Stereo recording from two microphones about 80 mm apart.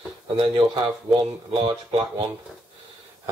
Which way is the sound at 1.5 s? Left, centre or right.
Right.